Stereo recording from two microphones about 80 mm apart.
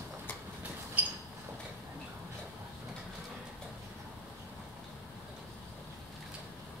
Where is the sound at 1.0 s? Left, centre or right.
Right.